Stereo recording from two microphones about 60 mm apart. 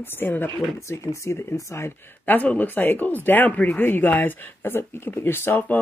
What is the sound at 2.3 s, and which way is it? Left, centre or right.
Speech, left.